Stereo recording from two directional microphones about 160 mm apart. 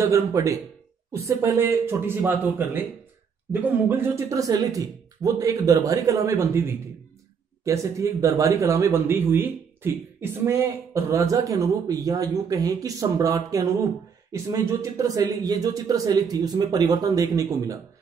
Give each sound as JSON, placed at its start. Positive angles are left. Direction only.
{"t": 0.0, "sound": "speech", "side_deg": -20}
{"t": 7.6, "sound": "speech", "side_deg": -20}